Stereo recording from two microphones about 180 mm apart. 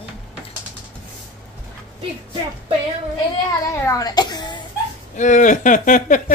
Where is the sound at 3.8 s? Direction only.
20° left (ahead or behind).